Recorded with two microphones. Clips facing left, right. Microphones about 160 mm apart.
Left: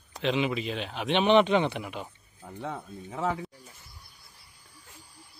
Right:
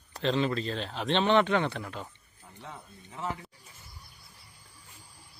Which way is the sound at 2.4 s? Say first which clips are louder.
Left 9 dB; 70° left (ahead or behind).